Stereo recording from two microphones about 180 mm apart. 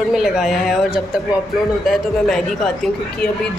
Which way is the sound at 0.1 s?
Centre (ahead or behind).